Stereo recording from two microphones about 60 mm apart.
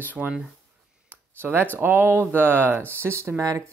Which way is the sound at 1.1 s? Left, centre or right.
Right.